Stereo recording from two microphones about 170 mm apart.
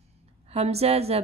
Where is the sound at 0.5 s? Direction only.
35° right (ahead or behind).